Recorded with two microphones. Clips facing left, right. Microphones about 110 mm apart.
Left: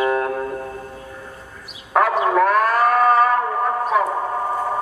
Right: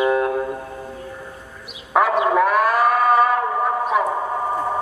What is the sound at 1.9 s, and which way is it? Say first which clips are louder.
Livestock: even; 5° right (ahead or behind).